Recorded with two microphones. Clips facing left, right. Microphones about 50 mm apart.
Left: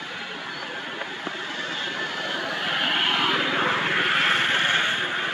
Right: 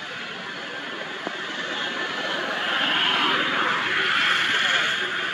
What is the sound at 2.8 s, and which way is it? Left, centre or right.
Vehicle, right.